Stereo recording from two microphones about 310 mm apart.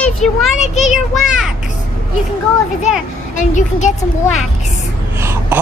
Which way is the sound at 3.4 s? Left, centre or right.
Left.